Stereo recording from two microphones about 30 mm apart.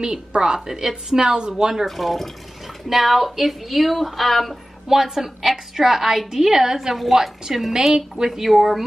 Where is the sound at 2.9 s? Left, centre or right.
Centre.